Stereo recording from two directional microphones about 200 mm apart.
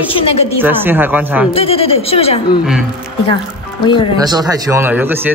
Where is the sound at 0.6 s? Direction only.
10° right (ahead or behind).